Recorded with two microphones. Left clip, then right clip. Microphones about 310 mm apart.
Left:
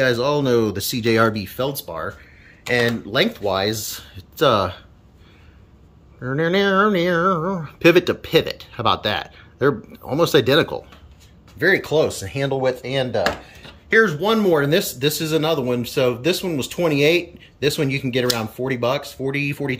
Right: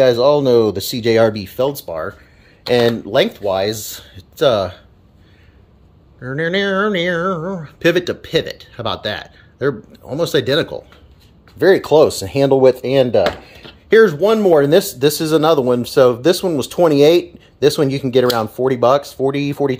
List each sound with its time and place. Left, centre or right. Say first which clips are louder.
0.0 s speech: right 7 dB; centre
2.7 s speech: right 5 dB; right
3.1 s speech: right 4 dB; centre
6.1 s speech: right 1 dB; centre
11.5 s speech: right 6 dB; centre
14.2 s speech: right 6 dB; centre